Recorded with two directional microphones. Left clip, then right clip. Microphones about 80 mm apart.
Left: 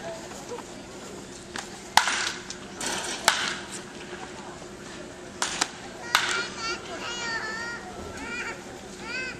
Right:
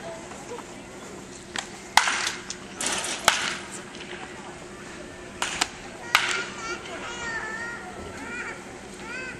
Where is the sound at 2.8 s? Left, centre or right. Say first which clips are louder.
Right 2 dB; centre.